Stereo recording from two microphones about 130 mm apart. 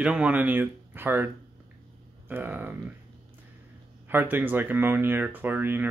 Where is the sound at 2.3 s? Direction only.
15° right (ahead or behind).